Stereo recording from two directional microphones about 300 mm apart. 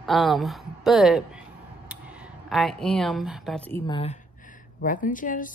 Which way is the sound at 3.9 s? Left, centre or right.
Centre.